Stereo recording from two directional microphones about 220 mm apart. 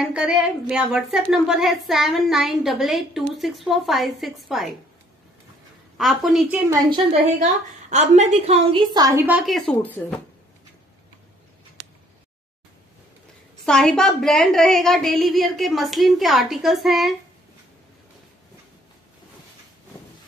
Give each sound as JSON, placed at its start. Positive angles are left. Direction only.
{"t": 0.1, "sound": "a woman's voice", "side_deg": -5}
{"t": 5.9, "sound": "a woman's voice", "side_deg": 0}
{"t": 7.9, "sound": "a woman's voice", "side_deg": -30}
{"t": 13.7, "sound": "a woman's voice", "side_deg": 0}